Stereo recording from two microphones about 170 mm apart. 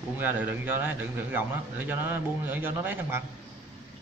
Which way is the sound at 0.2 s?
10° right (ahead or behind).